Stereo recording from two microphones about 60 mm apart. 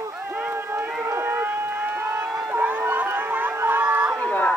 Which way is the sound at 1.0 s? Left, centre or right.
Right.